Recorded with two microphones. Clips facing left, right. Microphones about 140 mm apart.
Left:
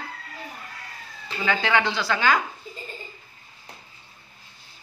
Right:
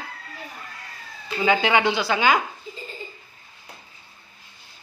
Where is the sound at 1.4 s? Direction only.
15° right (ahead or behind).